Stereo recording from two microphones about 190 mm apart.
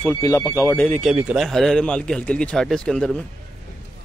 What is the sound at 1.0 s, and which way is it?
Speech, 5° right (ahead or behind).